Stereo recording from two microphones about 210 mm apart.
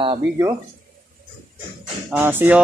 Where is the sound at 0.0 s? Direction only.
20° right (ahead or behind).